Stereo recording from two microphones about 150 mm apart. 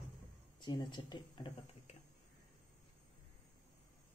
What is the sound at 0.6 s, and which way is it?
Speech, 30° left (ahead or behind).